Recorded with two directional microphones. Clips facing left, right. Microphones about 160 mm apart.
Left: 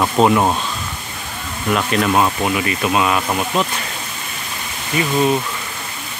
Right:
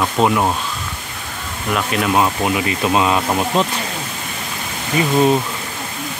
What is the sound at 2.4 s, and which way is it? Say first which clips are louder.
Speech: right 1 dB; 20° right (ahead or behind).